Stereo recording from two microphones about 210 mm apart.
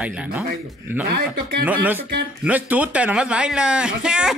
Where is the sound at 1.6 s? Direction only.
10° right (ahead or behind).